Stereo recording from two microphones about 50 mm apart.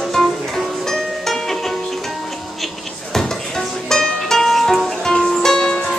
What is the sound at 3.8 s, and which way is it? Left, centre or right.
Music, centre.